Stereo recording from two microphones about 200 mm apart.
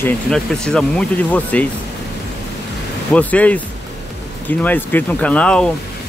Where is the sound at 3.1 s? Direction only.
5° left (ahead or behind).